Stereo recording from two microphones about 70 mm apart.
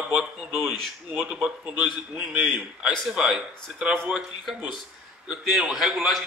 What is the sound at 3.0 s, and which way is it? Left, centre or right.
A man's voice, centre.